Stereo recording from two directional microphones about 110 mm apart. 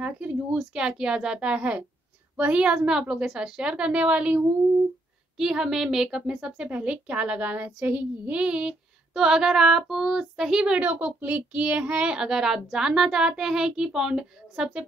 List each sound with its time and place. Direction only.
0.0 s a woman's voice: 10° right (ahead or behind)